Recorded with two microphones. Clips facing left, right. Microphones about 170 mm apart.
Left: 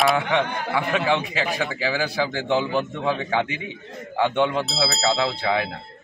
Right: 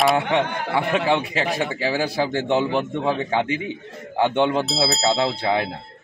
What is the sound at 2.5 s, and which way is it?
A man's voice, 25° right (ahead or behind).